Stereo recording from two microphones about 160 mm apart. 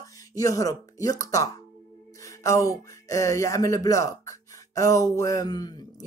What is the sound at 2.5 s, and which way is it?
Speech, 20° left (ahead or behind).